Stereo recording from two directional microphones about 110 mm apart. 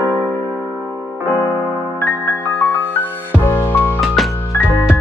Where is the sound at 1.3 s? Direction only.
20° right (ahead or behind).